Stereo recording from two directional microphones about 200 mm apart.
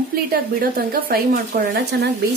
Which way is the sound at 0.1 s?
45° right (ahead or behind).